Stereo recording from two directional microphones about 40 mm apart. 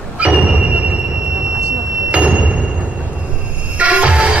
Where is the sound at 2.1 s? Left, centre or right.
Right.